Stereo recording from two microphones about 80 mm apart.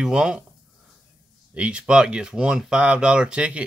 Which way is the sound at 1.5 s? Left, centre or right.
Centre.